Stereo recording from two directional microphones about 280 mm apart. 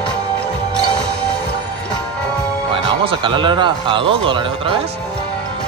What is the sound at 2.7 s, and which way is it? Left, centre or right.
Speech, centre.